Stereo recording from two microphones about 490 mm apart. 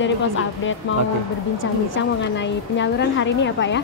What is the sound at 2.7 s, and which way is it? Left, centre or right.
A woman's voice, left.